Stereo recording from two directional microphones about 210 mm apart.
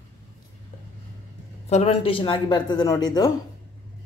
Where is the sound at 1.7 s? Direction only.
30° left (ahead or behind).